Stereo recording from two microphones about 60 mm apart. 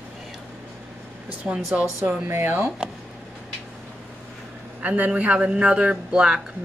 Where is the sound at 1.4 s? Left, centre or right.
Right.